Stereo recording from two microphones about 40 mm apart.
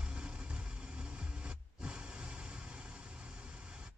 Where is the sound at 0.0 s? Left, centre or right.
Right.